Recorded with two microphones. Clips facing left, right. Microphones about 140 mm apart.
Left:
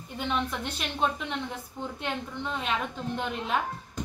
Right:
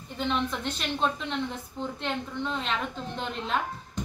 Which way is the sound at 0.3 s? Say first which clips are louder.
Right 1 dB; 10° left (ahead or behind).